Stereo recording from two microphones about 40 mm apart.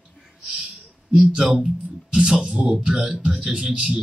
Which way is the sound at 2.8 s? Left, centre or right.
Right.